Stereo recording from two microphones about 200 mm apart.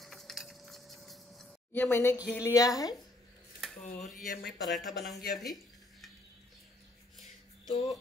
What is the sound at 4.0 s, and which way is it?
Speech, centre (ahead or behind).